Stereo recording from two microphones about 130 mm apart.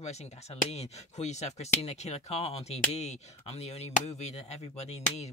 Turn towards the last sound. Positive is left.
turn(degrees=55)  # may be behind; listen again after turning